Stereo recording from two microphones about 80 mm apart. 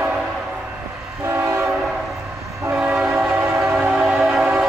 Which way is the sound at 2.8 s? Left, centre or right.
Right.